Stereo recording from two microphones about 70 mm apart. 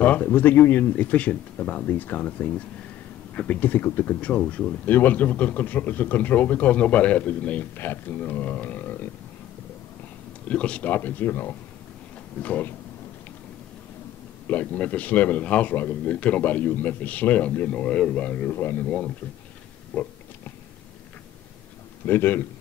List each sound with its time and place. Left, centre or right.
0.0 s speech: left
10.5 s speech: centre
14.5 s speech: left
22.0 s a man's voice: left